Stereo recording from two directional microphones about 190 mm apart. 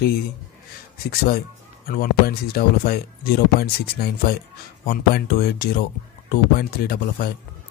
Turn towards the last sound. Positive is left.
turn(degrees=55)  # may be behind; listen again after turning